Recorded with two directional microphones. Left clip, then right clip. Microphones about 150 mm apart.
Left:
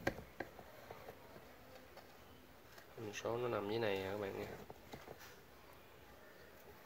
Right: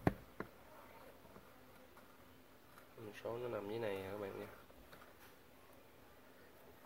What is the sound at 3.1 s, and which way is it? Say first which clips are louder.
Speech: left 4 dB; 15° left (ahead or behind).